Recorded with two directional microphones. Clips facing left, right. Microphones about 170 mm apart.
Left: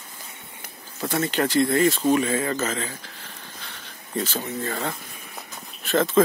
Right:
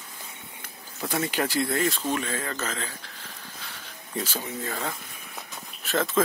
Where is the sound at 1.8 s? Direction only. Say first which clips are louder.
Left 7 dB; 5° left (ahead or behind).